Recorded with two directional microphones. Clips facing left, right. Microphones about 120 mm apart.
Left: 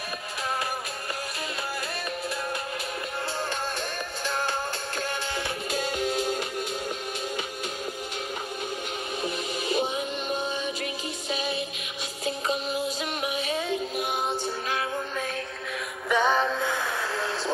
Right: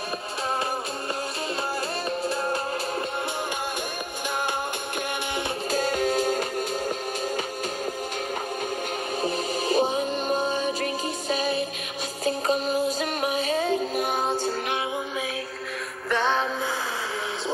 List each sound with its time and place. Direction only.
5.7 s music: 45° right (ahead or behind)
9.2 s music: 35° right (ahead or behind)
16.1 s music: 5° left (ahead or behind)